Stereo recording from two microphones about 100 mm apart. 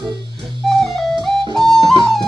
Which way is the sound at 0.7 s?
5° left (ahead or behind).